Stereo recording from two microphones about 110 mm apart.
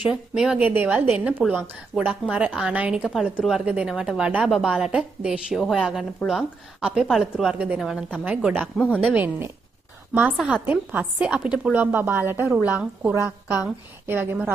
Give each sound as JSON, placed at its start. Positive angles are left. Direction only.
{"t": 0.0, "sound": "a woman's voice", "side_deg": -5}
{"t": 11.8, "sound": "a woman's voice", "side_deg": -20}